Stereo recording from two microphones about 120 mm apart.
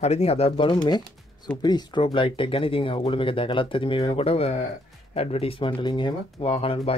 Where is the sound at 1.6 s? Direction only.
35° left (ahead or behind).